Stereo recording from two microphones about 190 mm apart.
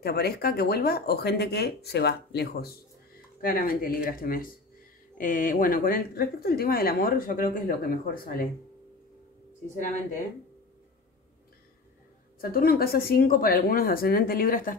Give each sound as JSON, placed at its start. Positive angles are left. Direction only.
{"t": 0.0, "sound": "a woman's voice", "side_deg": 55}
{"t": 9.8, "sound": "a woman's voice", "side_deg": 45}
{"t": 12.4, "sound": "a woman's voice", "side_deg": 50}